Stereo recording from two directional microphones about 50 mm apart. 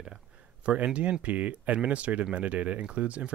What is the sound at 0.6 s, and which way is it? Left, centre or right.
Speech, right.